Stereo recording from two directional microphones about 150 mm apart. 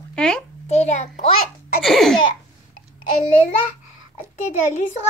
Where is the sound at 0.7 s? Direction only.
50° left (ahead or behind).